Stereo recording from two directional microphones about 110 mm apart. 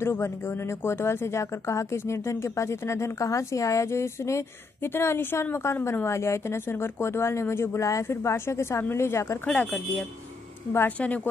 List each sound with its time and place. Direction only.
0.0 s speech: 20° left (ahead or behind)
9.5 s speech: 15° left (ahead or behind)